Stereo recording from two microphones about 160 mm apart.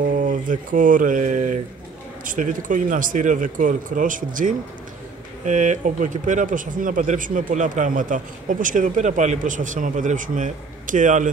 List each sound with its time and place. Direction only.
0.0 s mantra: 55° right (ahead or behind)
2.2 s speech: 55° right (ahead or behind)